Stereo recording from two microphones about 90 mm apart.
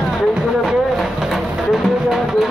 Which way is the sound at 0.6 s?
Centre (ahead or behind).